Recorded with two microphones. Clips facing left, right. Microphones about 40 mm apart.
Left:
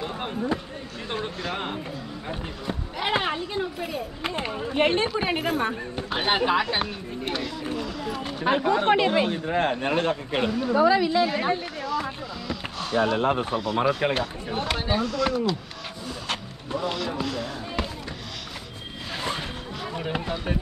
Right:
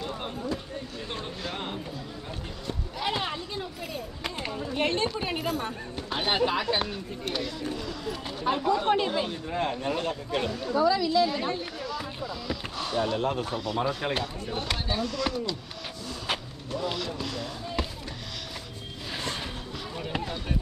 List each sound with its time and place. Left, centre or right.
0.0 s a sound: left
1.5 s music: left
3.0 s a sound: left
5.1 s speech: left
5.9 s speech: left
8.5 s speech: left; by 11.5 s centre
11.8 s a sound: centre
13.2 s speech: left
14.5 s speech: centre
16.7 s music: centre
17.2 s basketball bounce: centre
19.1 s a sound: centre